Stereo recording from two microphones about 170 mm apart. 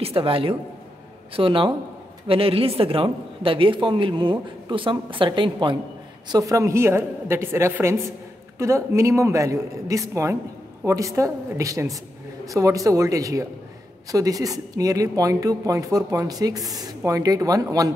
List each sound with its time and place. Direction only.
0.0 s a woman's voice: 35° right (ahead or behind)